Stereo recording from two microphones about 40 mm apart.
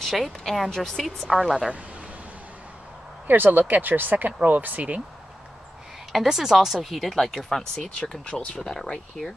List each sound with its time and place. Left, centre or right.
0.0 s speech: centre
1.2 s speech: centre
3.3 s speech: right
6.2 s speech: centre
8.1 s speech: left
8.5 s speech: centre